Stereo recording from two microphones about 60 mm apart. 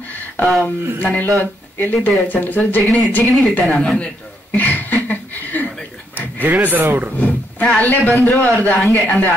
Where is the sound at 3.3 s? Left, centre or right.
Centre.